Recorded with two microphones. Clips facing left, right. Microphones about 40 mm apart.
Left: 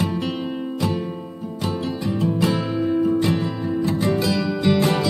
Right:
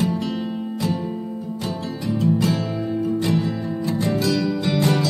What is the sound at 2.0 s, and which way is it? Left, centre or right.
Music, centre.